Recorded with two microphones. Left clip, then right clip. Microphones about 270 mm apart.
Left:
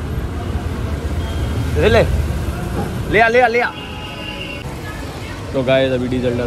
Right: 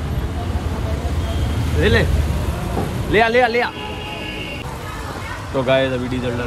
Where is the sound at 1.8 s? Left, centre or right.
Centre.